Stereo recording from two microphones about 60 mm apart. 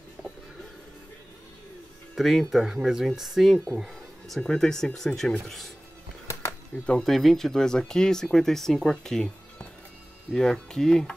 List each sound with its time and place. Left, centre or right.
2.1 s speech: centre
4.4 s speech: centre
6.7 s speech: left
7.1 s speech: centre
10.3 s speech: centre